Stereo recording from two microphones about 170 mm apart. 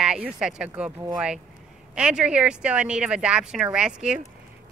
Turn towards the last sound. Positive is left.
turn(degrees=-5)  # may be behind; listen again after turning